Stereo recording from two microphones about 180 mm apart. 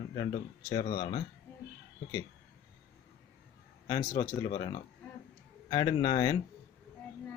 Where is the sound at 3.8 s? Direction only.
20° left (ahead or behind).